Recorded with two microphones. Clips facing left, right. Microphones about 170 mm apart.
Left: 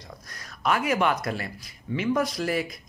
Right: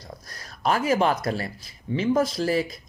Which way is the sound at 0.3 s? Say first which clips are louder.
Right 1 dB; 30° right (ahead or behind).